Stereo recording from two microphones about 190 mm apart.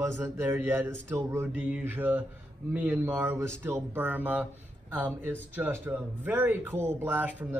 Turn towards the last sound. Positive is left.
turn(degrees=-10)  # may be behind; listen again after turning